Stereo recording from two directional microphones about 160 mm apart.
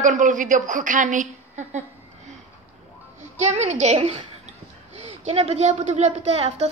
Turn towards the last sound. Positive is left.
turn(degrees=-40)  # may be behind; listen again after turning